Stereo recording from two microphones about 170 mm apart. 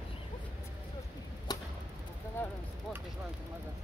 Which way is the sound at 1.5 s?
25° left (ahead or behind).